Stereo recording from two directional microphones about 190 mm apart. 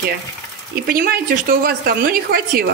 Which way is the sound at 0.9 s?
50° right (ahead or behind).